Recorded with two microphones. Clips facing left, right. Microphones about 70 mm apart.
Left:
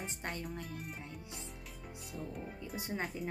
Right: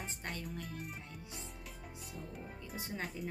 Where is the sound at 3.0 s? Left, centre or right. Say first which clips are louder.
Left 2 dB; centre.